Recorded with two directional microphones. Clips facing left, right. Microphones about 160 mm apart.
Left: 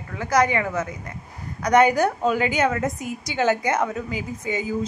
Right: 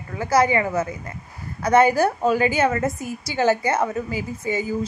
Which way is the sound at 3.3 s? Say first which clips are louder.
Right 1 dB; 5° right (ahead or behind).